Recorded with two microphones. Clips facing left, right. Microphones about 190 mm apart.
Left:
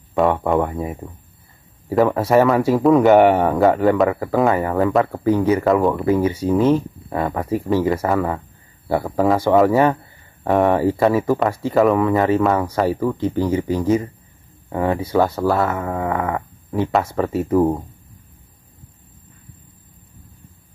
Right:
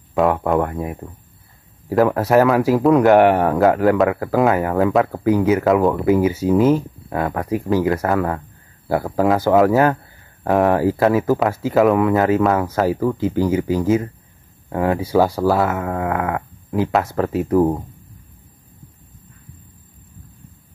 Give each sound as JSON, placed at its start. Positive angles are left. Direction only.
{"t": 0.1, "sound": "speech", "side_deg": 0}